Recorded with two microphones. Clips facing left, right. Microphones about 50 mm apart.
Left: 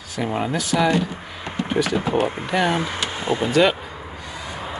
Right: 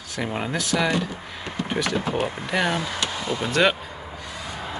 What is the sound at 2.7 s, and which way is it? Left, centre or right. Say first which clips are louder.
Speech: left 3 dB; left.